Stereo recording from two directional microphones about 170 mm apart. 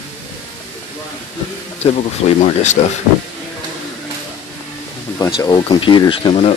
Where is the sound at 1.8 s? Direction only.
40° left (ahead or behind).